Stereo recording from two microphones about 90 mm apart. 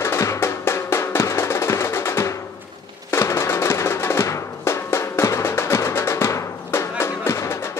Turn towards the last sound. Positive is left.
turn(degrees=30)  # may be behind; listen again after turning